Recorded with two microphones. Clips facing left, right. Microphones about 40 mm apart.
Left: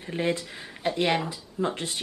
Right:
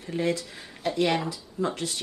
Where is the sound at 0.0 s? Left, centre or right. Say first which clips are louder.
Even; left.